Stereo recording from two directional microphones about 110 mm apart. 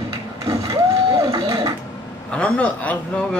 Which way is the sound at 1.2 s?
50° right (ahead or behind).